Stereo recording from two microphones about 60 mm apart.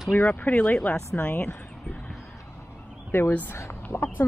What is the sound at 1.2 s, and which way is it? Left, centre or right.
Speech, left.